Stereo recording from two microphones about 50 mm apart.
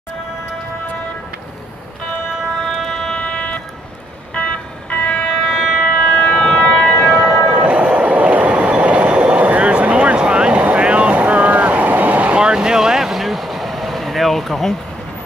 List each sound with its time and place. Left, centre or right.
2.6 s music: centre
4.4 s a sound: left
5.3 s civil defense siren: centre
5.9 s siren: left
6.3 s train: centre
7.6 s train: right
10.6 s boat: right
12.4 s vehicle: centre